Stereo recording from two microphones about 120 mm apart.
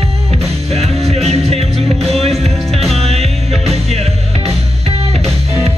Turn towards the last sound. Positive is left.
turn(degrees=-65)  # may be behind; listen again after turning